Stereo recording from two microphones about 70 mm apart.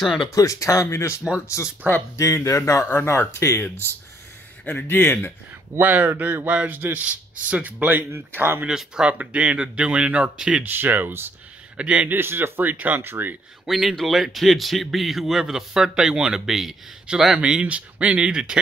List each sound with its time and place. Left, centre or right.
0.3 s speech: left
2.9 s speech: left
5.8 s a man's voice: right
8.6 s speech: centre
10.6 s speech: right
11.8 s speech: centre
12.2 s speech: right
13.7 s speech: centre